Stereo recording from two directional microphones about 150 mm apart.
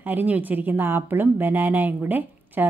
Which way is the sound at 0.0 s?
10° right (ahead or behind).